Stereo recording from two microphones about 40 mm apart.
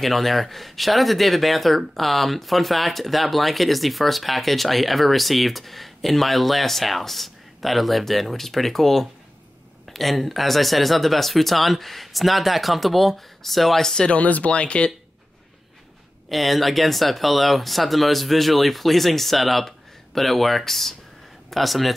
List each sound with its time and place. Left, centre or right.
0.0 s speech: centre
14.1 s speech: left
16.3 s speech: centre